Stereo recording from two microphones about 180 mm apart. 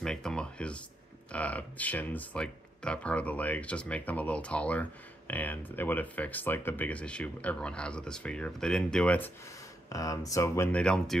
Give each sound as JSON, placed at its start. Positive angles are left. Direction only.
{"t": 0.0, "sound": "a sound", "side_deg": 5}
{"t": 1.3, "sound": "speech", "side_deg": 10}
{"t": 9.8, "sound": "speech", "side_deg": 20}